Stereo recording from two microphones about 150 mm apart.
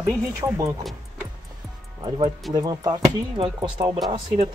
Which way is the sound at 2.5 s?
25° right (ahead or behind).